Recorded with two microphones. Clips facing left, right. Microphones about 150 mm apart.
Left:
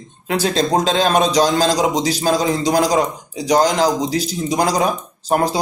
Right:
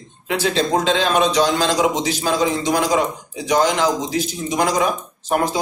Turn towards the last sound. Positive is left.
turn(degrees=35)  # may be behind; listen again after turning